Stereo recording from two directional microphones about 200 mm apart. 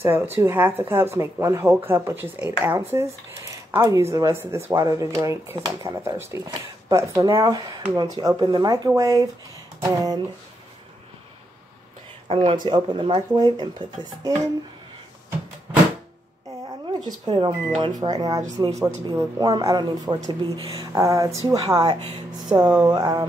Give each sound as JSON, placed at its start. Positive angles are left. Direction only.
{"t": 0.0, "sound": "speech", "side_deg": -10}
{"t": 12.3, "sound": "speech", "side_deg": -25}
{"t": 17.3, "sound": "speech", "side_deg": -20}
{"t": 20.9, "sound": "speech", "side_deg": -15}